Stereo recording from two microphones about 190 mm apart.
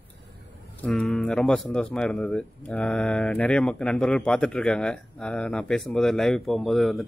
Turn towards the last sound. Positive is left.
turn(degrees=0)  # may be behind; listen again after turning